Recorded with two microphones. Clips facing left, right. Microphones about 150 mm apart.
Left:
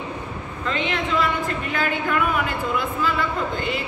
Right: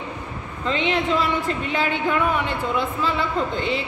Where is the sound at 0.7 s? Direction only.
30° right (ahead or behind).